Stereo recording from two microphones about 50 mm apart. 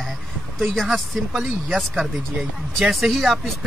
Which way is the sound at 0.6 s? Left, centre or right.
Centre.